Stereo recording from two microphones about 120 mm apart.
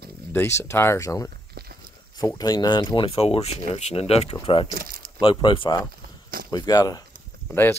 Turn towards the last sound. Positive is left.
turn(degrees=20)  # may be behind; listen again after turning